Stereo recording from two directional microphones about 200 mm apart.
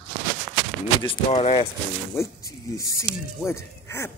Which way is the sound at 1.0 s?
30° left (ahead or behind).